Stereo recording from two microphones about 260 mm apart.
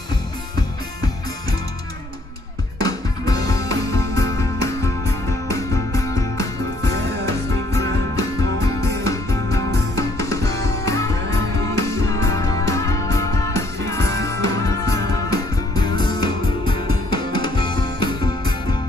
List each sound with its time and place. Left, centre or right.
2.8 s music: centre
7.7 s music: centre